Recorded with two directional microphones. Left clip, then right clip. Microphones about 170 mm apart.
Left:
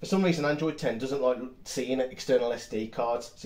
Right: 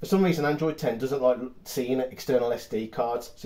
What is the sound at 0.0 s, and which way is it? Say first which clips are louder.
Speech: right 3 dB; 50° right (ahead or behind).